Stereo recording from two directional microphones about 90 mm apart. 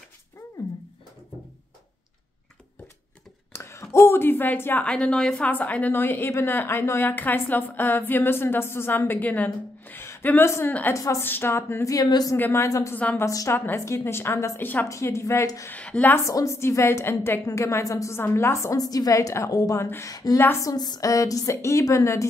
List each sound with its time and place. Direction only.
3.5 s speech: 30° left (ahead or behind)
4.8 s a woman's voice: 10° left (ahead or behind); by 12.4 s 45° left (ahead or behind)
12.4 s a woman's voice: 20° left (ahead or behind)
12.6 s a woman's voice: 40° left (ahead or behind)
12.9 s a woman's voice: 15° left (ahead or behind)
13.2 s a woman's voice: 35° left (ahead or behind); by 14.9 s 20° left (ahead or behind)
14.9 s a woman's voice: 35° left (ahead or behind)
15.7 s a woman's voice: 20° left (ahead or behind)
16.3 s a woman's voice: 35° left (ahead or behind)
20.1 s a woman's voice: 45° left (ahead or behind)